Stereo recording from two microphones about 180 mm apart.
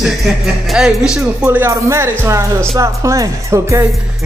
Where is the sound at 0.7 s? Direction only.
Centre (ahead or behind).